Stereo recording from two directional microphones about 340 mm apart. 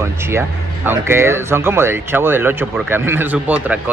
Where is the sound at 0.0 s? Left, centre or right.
Centre.